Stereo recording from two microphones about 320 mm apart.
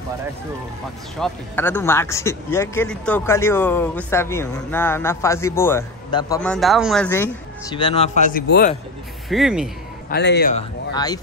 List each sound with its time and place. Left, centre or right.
1.2 s speech: centre
7.7 s speech: centre
9.3 s speech: centre
10.0 s speech: left
10.9 s speech: centre